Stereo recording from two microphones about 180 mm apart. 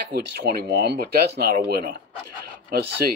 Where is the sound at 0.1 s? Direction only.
65° right (ahead or behind).